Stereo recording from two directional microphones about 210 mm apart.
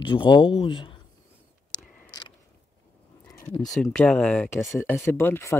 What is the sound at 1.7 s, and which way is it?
Camera, 20° left (ahead or behind).